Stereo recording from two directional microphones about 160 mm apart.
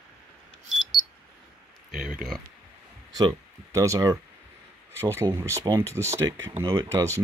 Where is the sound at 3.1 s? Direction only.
20° right (ahead or behind).